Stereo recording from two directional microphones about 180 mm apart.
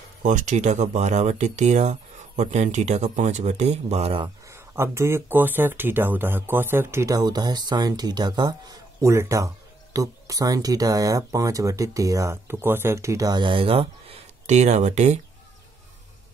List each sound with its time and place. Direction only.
0.2 s speech: 45° right (ahead or behind)
4.5 s speech: 15° right (ahead or behind); by 15.1 s 40° right (ahead or behind)